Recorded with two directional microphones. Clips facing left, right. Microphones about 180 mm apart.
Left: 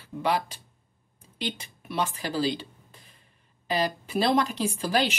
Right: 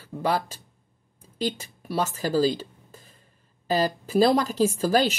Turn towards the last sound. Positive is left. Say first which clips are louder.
# right 5 dB
turn(degrees=-40)  # may be behind; listen again after turning